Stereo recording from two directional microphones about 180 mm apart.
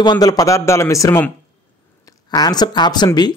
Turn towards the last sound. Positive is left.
turn(degrees=25)  # may be behind; listen again after turning